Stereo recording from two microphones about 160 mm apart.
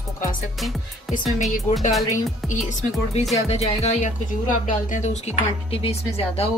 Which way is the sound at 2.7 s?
50° left (ahead or behind).